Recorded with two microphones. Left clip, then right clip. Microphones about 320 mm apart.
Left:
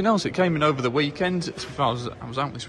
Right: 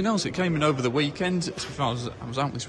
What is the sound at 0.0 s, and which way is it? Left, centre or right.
A man's voice, centre.